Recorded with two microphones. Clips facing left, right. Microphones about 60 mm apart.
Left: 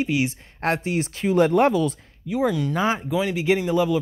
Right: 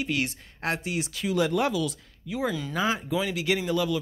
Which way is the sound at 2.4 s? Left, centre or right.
Centre.